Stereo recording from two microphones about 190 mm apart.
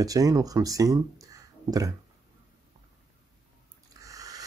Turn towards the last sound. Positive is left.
turn(degrees=-20)  # may be behind; listen again after turning